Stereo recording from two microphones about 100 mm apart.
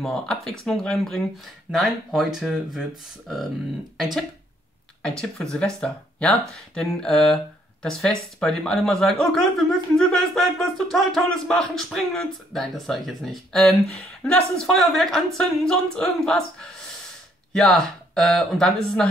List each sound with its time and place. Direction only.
0.0 s speech: 5° left (ahead or behind)
5.0 s speech: 5° left (ahead or behind)
17.5 s speech: 5° left (ahead or behind)